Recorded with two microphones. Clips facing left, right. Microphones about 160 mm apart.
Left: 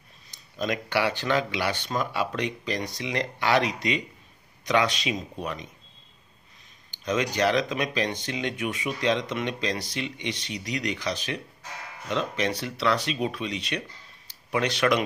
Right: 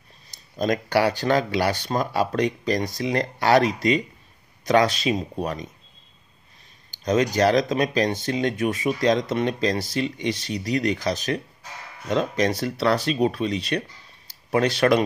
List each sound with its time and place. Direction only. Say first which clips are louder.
0.6 s speech: right 5 dB; 40° right (ahead or behind)
7.1 s speech: right 5 dB; 40° right (ahead or behind)